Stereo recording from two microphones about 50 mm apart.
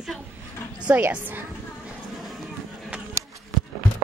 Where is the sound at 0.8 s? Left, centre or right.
Right.